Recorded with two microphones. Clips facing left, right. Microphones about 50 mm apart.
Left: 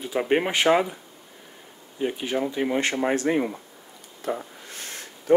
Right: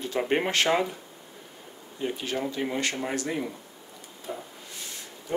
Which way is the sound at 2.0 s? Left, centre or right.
Centre.